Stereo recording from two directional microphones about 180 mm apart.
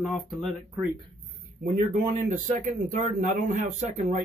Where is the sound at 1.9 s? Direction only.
40° right (ahead or behind).